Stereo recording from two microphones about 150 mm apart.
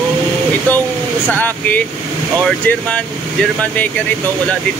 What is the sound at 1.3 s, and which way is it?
Speech, 10° left (ahead or behind).